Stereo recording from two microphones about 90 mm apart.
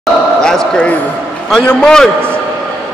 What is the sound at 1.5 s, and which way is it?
Speech, 10° left (ahead or behind).